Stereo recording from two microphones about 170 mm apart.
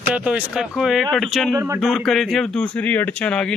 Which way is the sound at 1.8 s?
Centre (ahead or behind).